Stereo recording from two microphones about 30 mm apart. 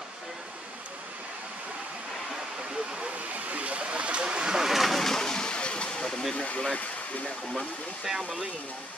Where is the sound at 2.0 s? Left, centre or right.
Centre.